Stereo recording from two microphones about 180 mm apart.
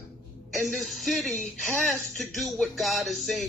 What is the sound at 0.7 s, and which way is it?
Speech, centre (ahead or behind).